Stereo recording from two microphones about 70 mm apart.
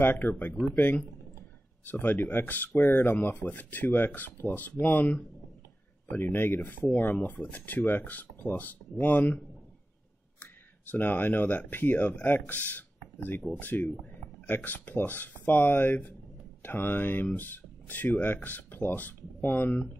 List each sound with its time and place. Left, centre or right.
0.0 s speech: left
1.9 s speech: left
10.4 s speech: left